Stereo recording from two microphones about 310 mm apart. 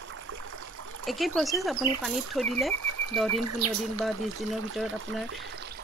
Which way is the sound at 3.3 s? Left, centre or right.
Right.